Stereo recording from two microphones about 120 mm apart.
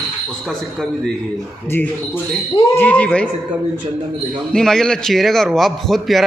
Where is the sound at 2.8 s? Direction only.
10° left (ahead or behind).